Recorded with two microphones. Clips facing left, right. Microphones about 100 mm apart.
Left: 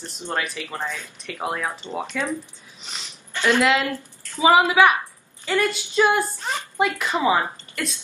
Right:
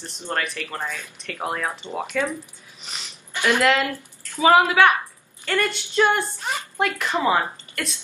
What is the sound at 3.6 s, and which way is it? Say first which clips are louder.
Speech: right 1 dB; centre (ahead or behind).